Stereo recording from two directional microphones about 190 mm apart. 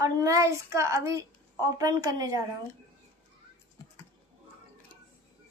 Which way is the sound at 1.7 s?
20° right (ahead or behind).